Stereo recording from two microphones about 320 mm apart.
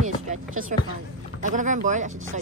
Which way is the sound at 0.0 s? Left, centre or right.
Right.